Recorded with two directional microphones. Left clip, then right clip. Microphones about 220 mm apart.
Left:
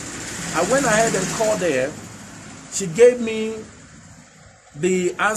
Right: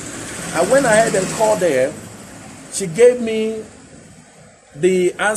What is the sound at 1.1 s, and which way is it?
Speech, 45° left (ahead or behind).